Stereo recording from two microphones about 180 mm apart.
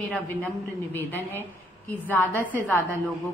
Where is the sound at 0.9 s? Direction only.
10° left (ahead or behind).